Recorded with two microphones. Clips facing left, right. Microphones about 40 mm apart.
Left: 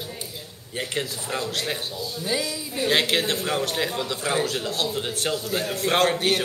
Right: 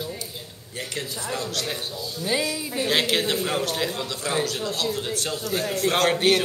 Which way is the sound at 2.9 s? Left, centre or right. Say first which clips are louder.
Left 1 dB; centre.